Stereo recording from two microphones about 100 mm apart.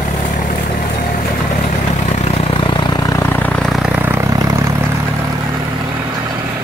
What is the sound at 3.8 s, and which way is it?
Vehicle, 20° right (ahead or behind).